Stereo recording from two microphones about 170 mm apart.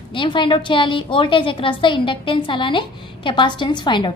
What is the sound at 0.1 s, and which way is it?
A woman's voice, 30° left (ahead or behind).